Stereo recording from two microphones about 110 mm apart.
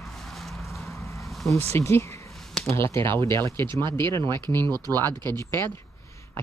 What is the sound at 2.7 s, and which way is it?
Speech, 25° left (ahead or behind).